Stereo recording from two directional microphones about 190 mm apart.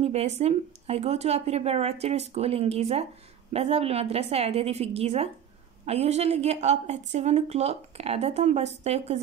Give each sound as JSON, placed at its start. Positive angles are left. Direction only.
{"t": 0.0, "sound": "a woman's voice", "side_deg": -35}